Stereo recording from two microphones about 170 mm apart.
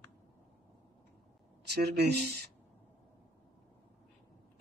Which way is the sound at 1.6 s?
75° right (ahead or behind).